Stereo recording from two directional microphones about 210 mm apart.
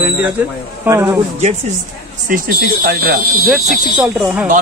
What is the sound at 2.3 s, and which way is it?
Speech, 45° right (ahead or behind).